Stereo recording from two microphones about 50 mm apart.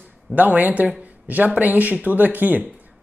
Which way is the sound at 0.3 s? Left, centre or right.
Right.